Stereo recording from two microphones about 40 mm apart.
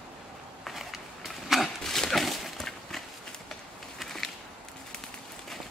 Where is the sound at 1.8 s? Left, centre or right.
Centre.